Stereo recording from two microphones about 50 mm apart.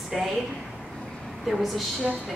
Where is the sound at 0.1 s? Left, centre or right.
Centre.